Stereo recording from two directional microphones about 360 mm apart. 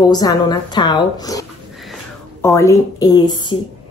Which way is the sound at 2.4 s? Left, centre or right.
Centre.